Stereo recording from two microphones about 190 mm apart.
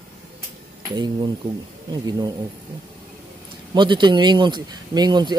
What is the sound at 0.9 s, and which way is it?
Speech, 25° right (ahead or behind).